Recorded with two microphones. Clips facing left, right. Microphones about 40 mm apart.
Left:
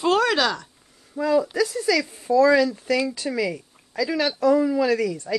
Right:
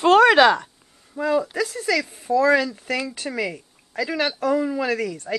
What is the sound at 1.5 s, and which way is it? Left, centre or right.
Speech, right.